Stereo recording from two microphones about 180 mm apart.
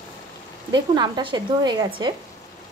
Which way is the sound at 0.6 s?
25° right (ahead or behind).